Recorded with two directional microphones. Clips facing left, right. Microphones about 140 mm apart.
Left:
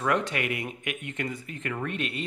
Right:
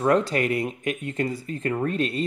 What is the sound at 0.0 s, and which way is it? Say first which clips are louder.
Speech: right 6 dB; 35° right (ahead or behind).